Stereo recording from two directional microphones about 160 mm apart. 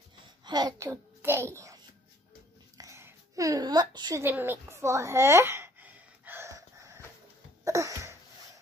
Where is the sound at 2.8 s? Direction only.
15° right (ahead or behind).